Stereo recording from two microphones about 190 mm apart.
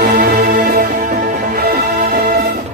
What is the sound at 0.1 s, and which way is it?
Music, 55° right (ahead or behind).